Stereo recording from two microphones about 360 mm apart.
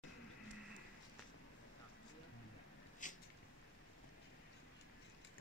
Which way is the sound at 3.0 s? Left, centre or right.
Left.